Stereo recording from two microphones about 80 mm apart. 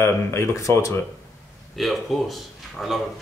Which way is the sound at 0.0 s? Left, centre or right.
Left.